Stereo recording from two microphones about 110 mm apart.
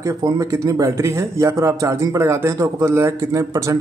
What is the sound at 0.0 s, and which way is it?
A man's voice, 30° right (ahead or behind).